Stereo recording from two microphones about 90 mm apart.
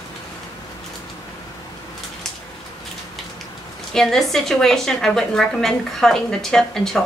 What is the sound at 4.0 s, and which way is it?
A woman's voice, 5° left (ahead or behind).